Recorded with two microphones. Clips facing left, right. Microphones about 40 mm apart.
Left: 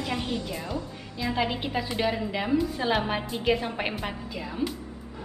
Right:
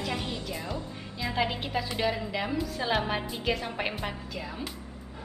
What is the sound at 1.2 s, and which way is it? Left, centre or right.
A woman's voice, centre.